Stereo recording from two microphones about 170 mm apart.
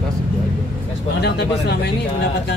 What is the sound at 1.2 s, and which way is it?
Speech, 75° left (ahead or behind).